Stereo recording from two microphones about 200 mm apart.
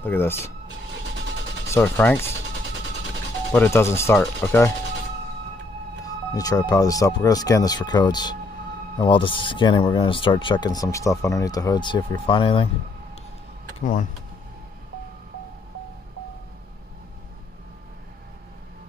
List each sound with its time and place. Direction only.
0.0 s speech: 10° left (ahead or behind)
1.7 s speech: 10° left (ahead or behind)
3.5 s speech: 10° left (ahead or behind)
6.0 s speech: 20° left (ahead or behind)